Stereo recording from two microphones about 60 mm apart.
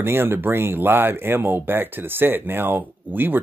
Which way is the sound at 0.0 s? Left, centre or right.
Right.